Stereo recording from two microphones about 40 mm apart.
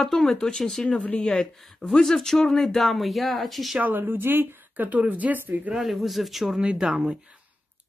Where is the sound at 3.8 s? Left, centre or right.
Right.